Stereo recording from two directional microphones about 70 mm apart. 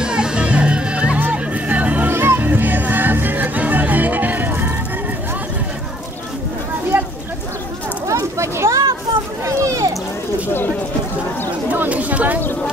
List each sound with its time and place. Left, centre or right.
0.0 s music: centre; by 4.7 s right
8.1 s a sound: right
11.7 s chatter: right